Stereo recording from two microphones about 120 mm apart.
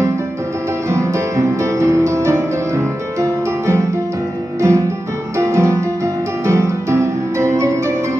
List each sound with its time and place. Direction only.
0.8 s music: 25° right (ahead or behind)